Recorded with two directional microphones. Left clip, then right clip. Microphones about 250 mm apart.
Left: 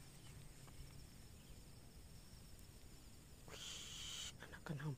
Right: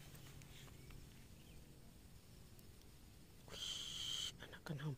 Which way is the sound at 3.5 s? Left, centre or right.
Centre.